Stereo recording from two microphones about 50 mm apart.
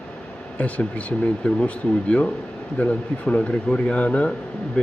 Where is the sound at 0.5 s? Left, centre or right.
Left.